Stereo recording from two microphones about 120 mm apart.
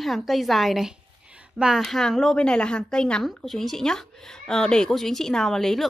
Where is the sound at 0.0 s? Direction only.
Centre (ahead or behind).